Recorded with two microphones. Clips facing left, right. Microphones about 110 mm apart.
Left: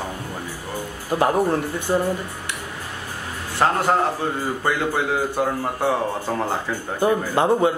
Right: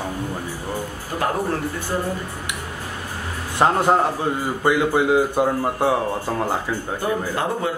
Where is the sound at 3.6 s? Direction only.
20° right (ahead or behind).